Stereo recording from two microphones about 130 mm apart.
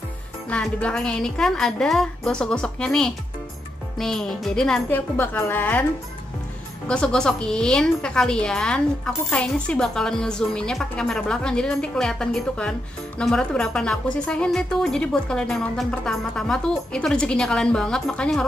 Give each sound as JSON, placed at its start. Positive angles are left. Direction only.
{"t": 0.5, "sound": "a woman's voice", "side_deg": 10}
{"t": 4.8, "sound": "speech", "side_deg": 15}
{"t": 6.9, "sound": "a woman's voice", "side_deg": 5}